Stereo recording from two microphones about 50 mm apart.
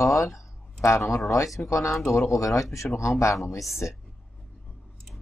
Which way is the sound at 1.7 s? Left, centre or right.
Left.